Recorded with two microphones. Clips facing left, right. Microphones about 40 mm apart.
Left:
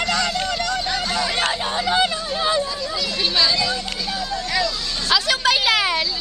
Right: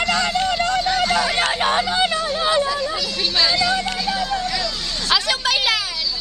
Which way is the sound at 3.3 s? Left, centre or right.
Centre.